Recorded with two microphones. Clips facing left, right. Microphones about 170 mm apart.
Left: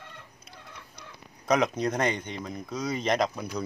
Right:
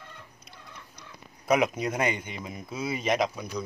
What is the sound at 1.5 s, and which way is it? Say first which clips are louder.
Speech: even; 10° right (ahead or behind).